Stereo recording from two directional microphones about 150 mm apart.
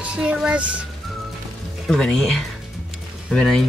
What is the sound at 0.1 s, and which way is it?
Speech, 5° right (ahead or behind).